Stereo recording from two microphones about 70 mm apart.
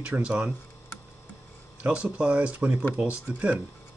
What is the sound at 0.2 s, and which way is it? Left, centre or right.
Speech, centre.